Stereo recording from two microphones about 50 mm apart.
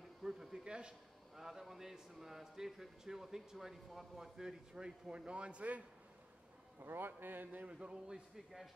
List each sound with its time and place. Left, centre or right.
0.2 s a sound: centre
1.3 s a man's voice: centre; by 5.9 s right
6.8 s a man's voice: right
7.6 s a man's voice: centre
8.4 s a man's voice: centre